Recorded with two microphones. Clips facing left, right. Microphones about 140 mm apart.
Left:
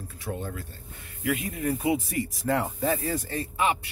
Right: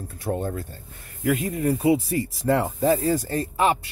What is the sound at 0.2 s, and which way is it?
Speech, 45° right (ahead or behind).